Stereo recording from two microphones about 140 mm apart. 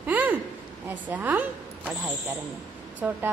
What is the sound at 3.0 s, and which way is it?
Speech, 10° right (ahead or behind).